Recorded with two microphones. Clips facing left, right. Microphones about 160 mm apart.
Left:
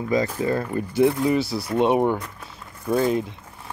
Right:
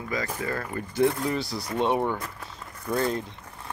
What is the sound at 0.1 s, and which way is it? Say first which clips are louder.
Speech: left 8 dB; 20° left (ahead or behind).